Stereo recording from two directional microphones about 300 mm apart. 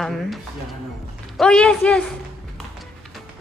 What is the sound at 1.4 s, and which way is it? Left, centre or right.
Speech, centre.